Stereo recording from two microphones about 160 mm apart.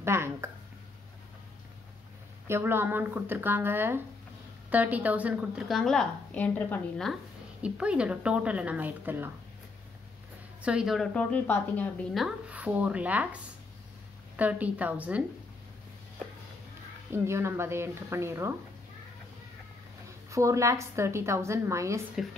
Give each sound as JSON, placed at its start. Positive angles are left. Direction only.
{"t": 0.0, "sound": "a sound", "side_deg": -15}
{"t": 2.4, "sound": "a woman's voice", "side_deg": -15}
{"t": 7.6, "sound": "a woman's voice", "side_deg": -5}
{"t": 10.6, "sound": "a woman's voice", "side_deg": -5}
{"t": 12.1, "sound": "a woman's voice", "side_deg": 0}
{"t": 17.1, "sound": "a woman's voice", "side_deg": -15}
{"t": 20.2, "sound": "a woman's voice", "side_deg": -20}